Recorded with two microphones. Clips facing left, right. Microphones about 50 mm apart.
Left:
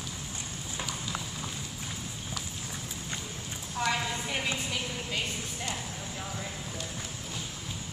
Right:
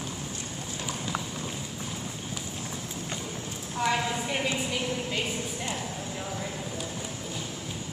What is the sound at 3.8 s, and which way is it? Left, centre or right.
Clip-clop, centre.